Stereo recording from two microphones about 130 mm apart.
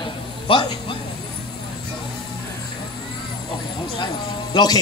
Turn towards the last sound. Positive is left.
turn(degrees=30)  # may be behind; listen again after turning